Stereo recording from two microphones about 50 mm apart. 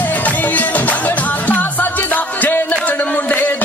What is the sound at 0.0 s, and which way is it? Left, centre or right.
Music, left.